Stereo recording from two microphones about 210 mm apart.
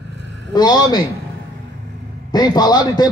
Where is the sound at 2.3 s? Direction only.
20° left (ahead or behind).